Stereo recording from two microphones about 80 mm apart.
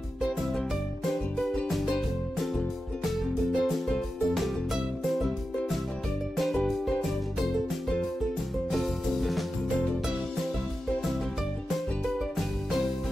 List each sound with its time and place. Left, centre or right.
0.2 s music: centre
1.7 s music: centre
6.3 s music: centre
8.6 s music: centre